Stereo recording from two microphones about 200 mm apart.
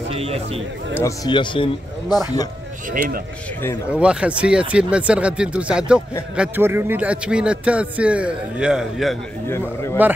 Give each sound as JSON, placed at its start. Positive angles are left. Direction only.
{"t": 0.1, "sound": "speech", "side_deg": -30}
{"t": 0.9, "sound": "speech", "side_deg": 15}
{"t": 2.9, "sound": "speech", "side_deg": -45}
{"t": 3.9, "sound": "a man's voice", "side_deg": -5}